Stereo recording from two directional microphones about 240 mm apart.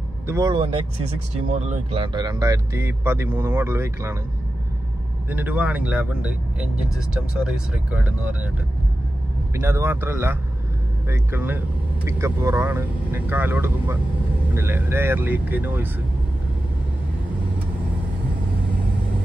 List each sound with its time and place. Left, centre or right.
0.3 s speech: centre
5.3 s speech: centre
9.6 s speech: centre